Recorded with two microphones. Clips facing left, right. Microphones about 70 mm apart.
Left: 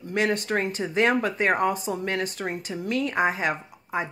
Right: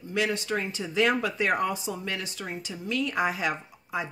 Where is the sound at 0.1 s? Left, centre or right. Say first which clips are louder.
Left 3 dB; left.